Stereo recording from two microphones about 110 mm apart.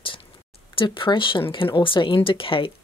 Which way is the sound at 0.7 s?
50° left (ahead or behind).